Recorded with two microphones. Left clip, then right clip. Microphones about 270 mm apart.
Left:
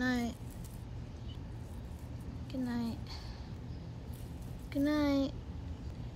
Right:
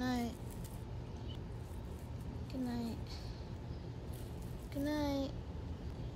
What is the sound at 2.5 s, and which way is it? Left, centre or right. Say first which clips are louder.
Speech: left 4 dB; left.